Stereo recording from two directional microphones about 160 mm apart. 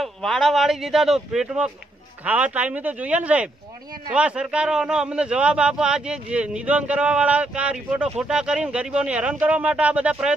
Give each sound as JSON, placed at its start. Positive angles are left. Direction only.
{"t": 0.0, "sound": "a man's voice", "side_deg": 0}